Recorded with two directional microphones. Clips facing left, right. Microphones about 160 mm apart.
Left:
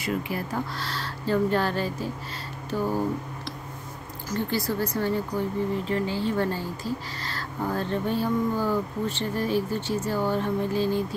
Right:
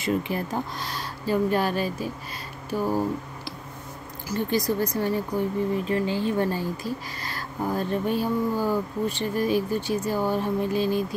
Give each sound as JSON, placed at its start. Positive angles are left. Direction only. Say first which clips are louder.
{"t": 0.0, "sound": "speech", "louder": "right 3 dB", "side_deg": -20}
{"t": 4.3, "sound": "speech", "louder": "right 3 dB", "side_deg": -15}